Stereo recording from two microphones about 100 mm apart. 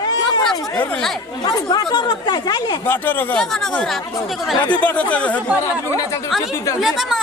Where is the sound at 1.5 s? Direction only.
45° left (ahead or behind).